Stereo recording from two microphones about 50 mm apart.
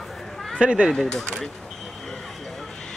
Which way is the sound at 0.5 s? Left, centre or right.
Right.